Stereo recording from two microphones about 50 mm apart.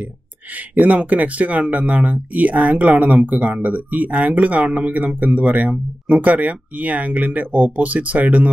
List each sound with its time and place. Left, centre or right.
0.6 s speech: right